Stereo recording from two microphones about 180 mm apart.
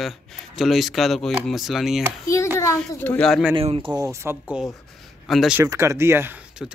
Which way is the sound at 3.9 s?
15° right (ahead or behind).